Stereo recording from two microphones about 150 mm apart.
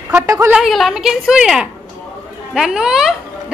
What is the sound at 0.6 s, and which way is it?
A child's voice, centre (ahead or behind).